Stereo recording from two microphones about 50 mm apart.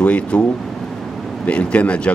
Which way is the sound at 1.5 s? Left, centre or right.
Left.